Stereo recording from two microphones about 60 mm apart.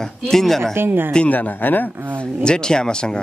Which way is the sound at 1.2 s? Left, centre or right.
Left.